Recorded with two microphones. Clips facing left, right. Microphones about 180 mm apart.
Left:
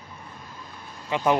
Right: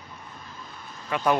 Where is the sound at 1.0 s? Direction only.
20° left (ahead or behind).